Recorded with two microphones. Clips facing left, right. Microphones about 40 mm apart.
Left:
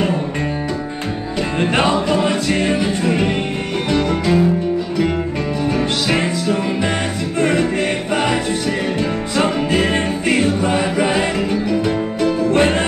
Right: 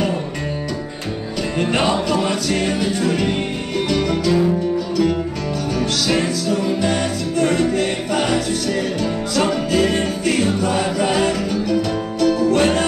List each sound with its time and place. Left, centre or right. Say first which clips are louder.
1.6 s music: left 2 dB; left
5.8 s music: right 1 dB; left